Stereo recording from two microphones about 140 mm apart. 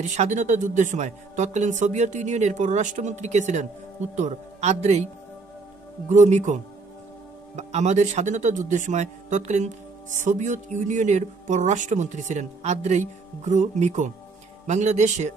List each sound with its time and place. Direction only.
0.0 s speech: 60° right (ahead or behind)
6.0 s speech: 55° right (ahead or behind)